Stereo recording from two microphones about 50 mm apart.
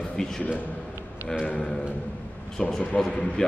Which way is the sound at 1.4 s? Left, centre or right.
Centre.